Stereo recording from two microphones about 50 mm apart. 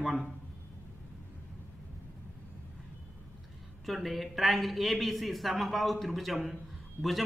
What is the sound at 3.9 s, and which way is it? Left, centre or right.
Speech, centre.